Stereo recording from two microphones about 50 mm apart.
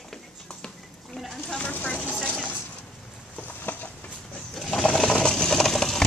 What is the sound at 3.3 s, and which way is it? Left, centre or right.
Boat, left.